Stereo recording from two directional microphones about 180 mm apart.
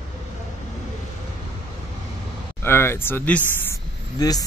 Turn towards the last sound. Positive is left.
turn(degrees=20)  # may be behind; listen again after turning